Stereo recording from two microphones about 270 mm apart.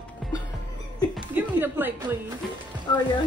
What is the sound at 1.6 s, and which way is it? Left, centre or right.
Speech, centre.